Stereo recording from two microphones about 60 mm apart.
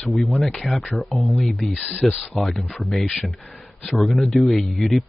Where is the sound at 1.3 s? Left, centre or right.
Centre.